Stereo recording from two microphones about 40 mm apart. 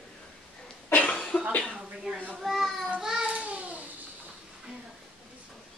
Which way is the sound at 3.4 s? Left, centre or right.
Right.